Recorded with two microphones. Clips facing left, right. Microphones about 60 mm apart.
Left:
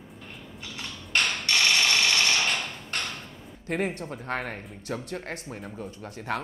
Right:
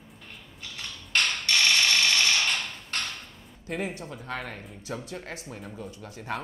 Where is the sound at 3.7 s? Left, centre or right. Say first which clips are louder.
Left 4 dB; left.